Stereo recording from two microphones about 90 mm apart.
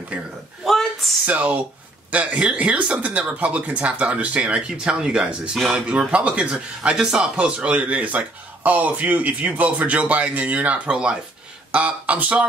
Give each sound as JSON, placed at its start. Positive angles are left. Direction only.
{"t": 0.1, "sound": "speech", "side_deg": -15}
{"t": 0.7, "sound": "a sound", "side_deg": 5}
{"t": 1.2, "sound": "speech", "side_deg": -15}